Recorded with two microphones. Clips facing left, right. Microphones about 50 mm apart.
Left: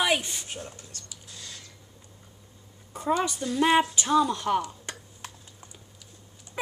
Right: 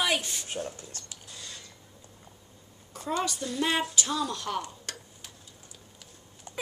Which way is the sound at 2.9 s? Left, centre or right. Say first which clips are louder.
Left 4 dB; left.